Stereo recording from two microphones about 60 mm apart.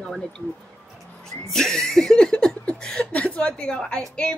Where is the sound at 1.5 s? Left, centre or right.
Centre.